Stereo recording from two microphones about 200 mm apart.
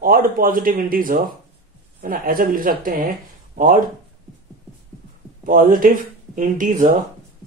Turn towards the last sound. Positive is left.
turn(degrees=-40)  # may be behind; listen again after turning